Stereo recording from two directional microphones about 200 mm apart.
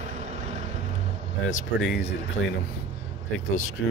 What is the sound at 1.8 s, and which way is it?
Speech, 60° left (ahead or behind).